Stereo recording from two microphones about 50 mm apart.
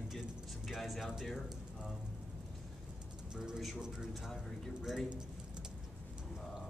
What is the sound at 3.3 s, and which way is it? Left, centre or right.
Speech, centre.